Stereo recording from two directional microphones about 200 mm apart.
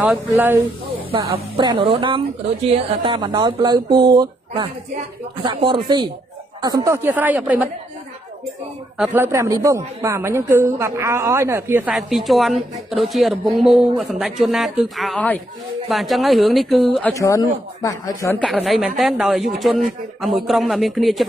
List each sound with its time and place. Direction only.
0.0 s speech: 10° right (ahead or behind)
1.1 s speech: 25° right (ahead or behind); by 7.7 s 10° right (ahead or behind)
8.9 s speech: 5° right (ahead or behind)
17.1 s speech: 15° left (ahead or behind)
18.4 s speech: centre (ahead or behind)